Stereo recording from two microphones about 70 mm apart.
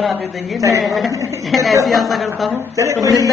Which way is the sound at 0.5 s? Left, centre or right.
Right.